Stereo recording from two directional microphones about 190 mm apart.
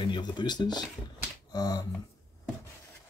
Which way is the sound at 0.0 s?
25° left (ahead or behind).